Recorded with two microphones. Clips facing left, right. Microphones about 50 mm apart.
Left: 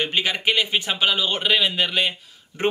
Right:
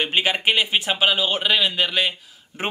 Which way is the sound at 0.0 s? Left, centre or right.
Centre.